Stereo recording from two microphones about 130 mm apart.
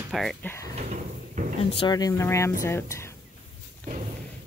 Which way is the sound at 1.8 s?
30° left (ahead or behind).